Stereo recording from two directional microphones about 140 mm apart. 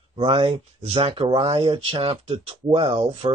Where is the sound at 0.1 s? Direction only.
40° right (ahead or behind).